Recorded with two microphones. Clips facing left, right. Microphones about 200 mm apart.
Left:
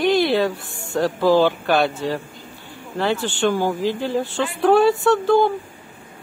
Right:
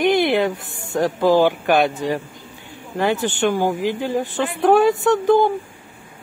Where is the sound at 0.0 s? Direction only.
20° right (ahead or behind).